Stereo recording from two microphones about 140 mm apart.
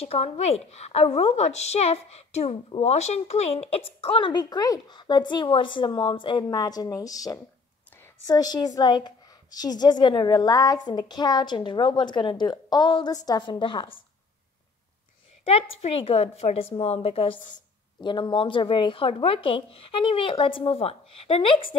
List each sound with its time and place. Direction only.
0.1 s a woman's voice: 50° left (ahead or behind)
15.4 s a woman's voice: 45° left (ahead or behind)